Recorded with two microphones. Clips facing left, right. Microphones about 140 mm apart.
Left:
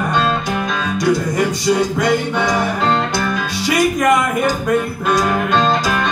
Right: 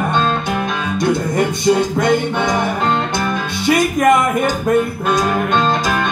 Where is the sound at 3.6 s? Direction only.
25° right (ahead or behind).